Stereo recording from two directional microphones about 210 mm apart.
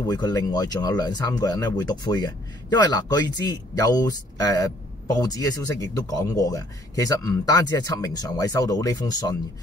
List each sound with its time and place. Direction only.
0.0 s speech: 15° left (ahead or behind)